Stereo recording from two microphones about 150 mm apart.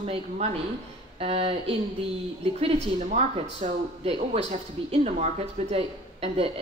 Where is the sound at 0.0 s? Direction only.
40° right (ahead or behind).